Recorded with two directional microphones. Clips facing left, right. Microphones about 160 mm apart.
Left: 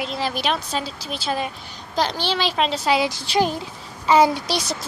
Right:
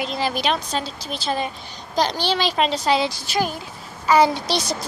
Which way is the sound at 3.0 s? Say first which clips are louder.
Left 3 dB; 25° left (ahead or behind).